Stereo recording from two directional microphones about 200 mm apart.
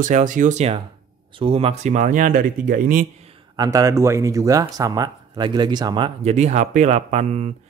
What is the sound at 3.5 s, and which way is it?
Speech, 20° right (ahead or behind).